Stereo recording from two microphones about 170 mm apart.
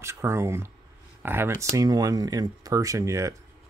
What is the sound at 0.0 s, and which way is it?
Speech, 15° right (ahead or behind).